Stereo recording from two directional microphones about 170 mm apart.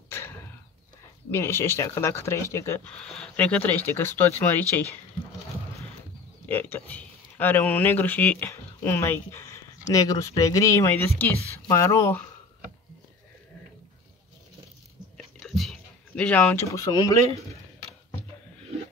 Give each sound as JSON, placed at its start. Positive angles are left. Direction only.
{"t": 0.1, "sound": "a sound", "side_deg": 15}
{"t": 1.3, "sound": "speech", "side_deg": 15}
{"t": 3.0, "sound": "speech", "side_deg": 5}
{"t": 6.5, "sound": "speech", "side_deg": 10}
{"t": 15.3, "sound": "a sound", "side_deg": 0}
{"t": 16.7, "sound": "speech", "side_deg": 20}